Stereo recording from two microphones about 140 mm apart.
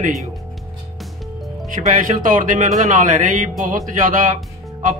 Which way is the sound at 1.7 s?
70° right (ahead or behind).